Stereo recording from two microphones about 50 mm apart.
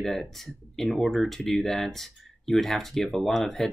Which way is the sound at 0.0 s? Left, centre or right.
Centre.